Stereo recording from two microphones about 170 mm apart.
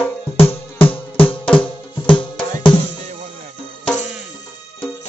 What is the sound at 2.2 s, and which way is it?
Music, 30° left (ahead or behind).